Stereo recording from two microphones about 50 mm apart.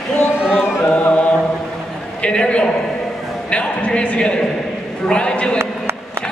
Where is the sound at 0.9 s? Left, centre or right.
Left.